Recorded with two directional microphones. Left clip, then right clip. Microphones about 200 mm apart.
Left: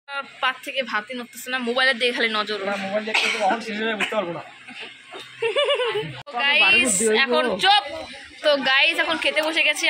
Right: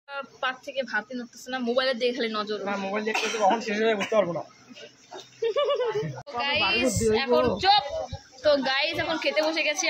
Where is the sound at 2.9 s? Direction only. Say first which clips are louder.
Left 6 dB; 35° right (ahead or behind).